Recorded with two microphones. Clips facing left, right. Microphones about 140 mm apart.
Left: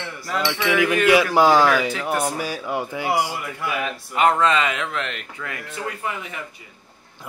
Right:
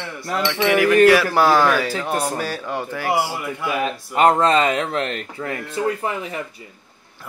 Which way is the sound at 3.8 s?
35° right (ahead or behind).